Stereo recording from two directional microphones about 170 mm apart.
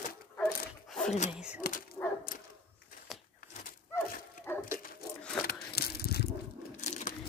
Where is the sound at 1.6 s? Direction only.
60° left (ahead or behind).